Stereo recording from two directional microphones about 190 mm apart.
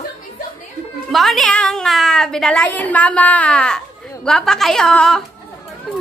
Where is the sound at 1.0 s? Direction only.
Centre (ahead or behind).